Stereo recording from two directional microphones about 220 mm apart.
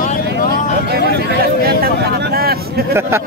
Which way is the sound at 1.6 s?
45° right (ahead or behind).